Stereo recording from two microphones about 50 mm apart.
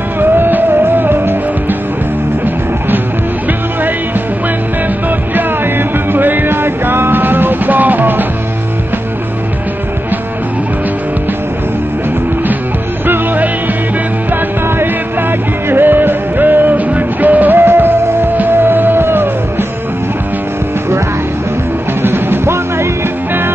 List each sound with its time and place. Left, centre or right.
0.2 s music: right
5.3 s music: right
13.0 s music: right
15.7 s music: right
22.0 s music: right